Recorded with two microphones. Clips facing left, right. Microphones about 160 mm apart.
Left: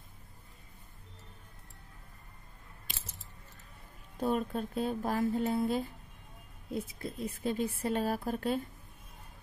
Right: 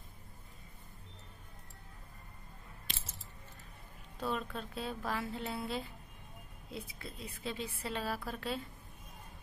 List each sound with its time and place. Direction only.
4.2 s a woman's voice: 45° left (ahead or behind)